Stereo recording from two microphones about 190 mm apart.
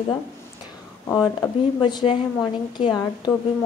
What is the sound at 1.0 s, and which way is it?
Speech, 15° left (ahead or behind).